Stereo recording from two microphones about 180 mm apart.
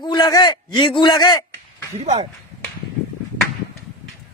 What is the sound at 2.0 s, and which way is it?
Speech, 40° right (ahead or behind).